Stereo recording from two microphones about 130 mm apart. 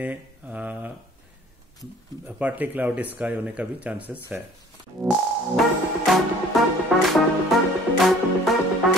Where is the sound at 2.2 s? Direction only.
10° right (ahead or behind).